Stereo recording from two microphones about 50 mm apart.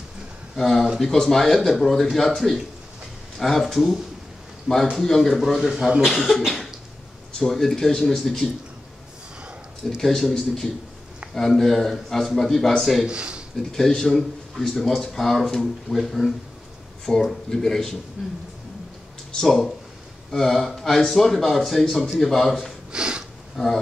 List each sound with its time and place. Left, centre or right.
0.6 s speech: centre
5.3 s speech: centre
9.8 s speech: centre
13.0 s speech: centre
13.6 s speech: centre
18.2 s a man's voice: centre
19.4 s speech: centre
22.9 s a sound: centre
23.5 s speech: centre